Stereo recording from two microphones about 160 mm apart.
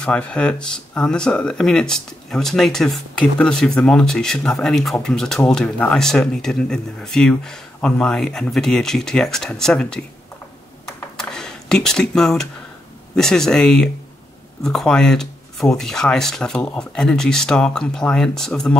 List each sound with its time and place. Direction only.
0.0 s speech: 5° left (ahead or behind)
11.1 s a sound: 5° left (ahead or behind)
13.1 s speech: 5° left (ahead or behind)